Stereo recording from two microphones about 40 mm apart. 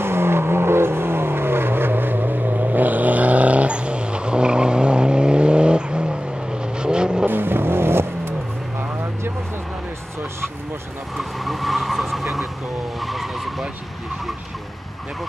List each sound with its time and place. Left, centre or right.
0.0 s vehicle: right
7.2 s vehicle: right
11.1 s vehicle: centre